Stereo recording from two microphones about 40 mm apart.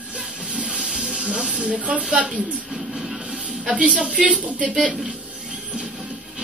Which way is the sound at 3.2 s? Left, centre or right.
Right.